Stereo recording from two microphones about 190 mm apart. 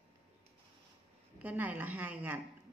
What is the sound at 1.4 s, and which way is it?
A woman's voice, 10° right (ahead or behind).